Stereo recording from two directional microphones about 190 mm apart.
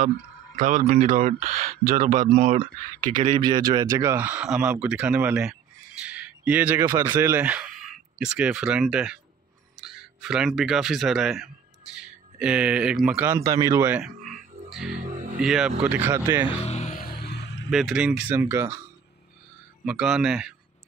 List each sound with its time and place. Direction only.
0.6 s speech: 40° right (ahead or behind)
2.2 s speech: 30° right (ahead or behind)
3.0 s speech: 45° right (ahead or behind)
3.3 s speech: 20° right (ahead or behind)
16.4 s music: 35° left (ahead or behind)
17.3 s vehicle: 60° left (ahead or behind)
17.6 s speech: 5° right (ahead or behind)
19.8 s speech: 5° right (ahead or behind)